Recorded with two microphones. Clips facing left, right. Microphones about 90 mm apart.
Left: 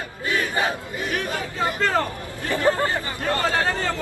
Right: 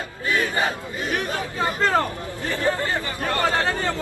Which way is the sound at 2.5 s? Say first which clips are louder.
Left 3 dB; 20° left (ahead or behind).